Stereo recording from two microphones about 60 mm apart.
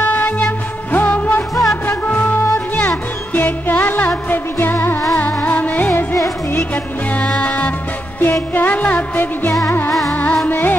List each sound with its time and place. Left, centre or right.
0.0 s music: left
1.5 s music: centre
1.9 s music: left
9.8 s music: centre
10.4 s music: left